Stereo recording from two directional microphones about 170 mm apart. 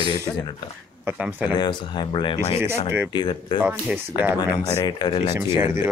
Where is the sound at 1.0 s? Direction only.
10° right (ahead or behind).